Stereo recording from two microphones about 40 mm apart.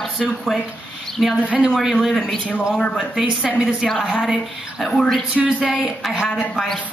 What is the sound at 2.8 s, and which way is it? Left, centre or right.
Speech, centre.